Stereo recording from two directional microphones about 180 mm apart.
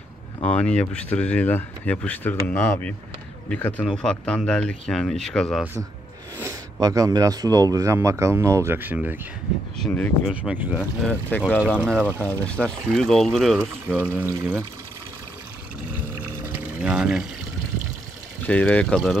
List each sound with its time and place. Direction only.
0.5 s speech: 10° left (ahead or behind)
6.4 s speech: 20° right (ahead or behind)
9.8 s speech: 5° left (ahead or behind)
10.3 s speech: 10° right (ahead or behind)
11.1 s speech: 10° left (ahead or behind)
12.0 s speech: 10° right (ahead or behind)
12.3 s speech: 5° left (ahead or behind)
14.0 s speech: 15° right (ahead or behind)
16.5 s pour: 5° right (ahead or behind)
18.5 s speech: 5° left (ahead or behind)